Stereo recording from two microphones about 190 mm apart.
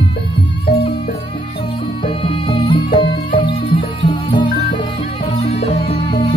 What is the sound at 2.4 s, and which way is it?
Music, 25° left (ahead or behind).